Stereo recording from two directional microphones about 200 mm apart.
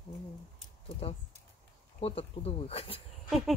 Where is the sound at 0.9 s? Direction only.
30° left (ahead or behind).